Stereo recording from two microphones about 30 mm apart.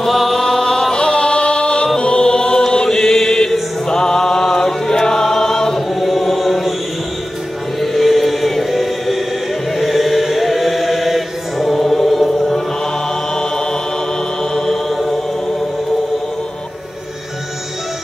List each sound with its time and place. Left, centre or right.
0.0 s chant: centre
1.1 s music: left
2.0 s chant: left
3.9 s choir: left
5.8 s chant: centre
7.8 s music: centre
9.8 s chant: centre
12.4 s choir: centre
13.3 s chant: left
14.4 s music: left
14.9 s music: centre